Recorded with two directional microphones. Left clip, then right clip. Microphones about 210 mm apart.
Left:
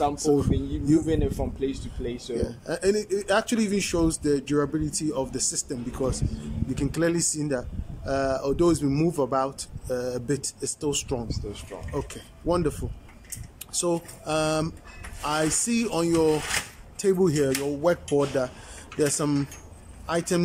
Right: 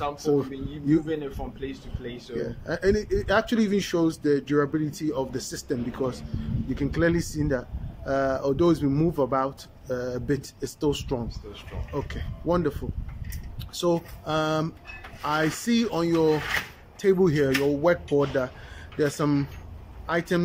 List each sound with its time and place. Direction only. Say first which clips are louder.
0.2 s speech: left 2 dB; 5° left (ahead or behind)
1.0 s speech: left 4 dB; 20° left (ahead or behind)
2.3 s speech: right 1 dB; 5° left (ahead or behind)
13.7 s speech: right 2 dB; 5° left (ahead or behind)